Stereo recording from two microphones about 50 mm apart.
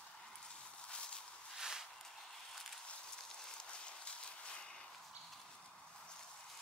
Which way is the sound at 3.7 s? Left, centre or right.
Left.